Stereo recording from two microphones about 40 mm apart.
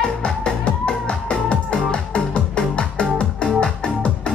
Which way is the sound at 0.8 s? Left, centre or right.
Left.